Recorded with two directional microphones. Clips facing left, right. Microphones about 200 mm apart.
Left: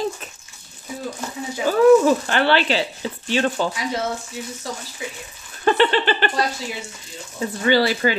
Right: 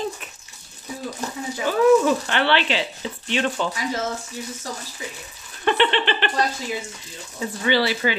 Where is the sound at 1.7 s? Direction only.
40° left (ahead or behind).